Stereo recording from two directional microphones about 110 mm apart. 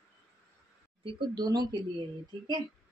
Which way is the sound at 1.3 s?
40° right (ahead or behind).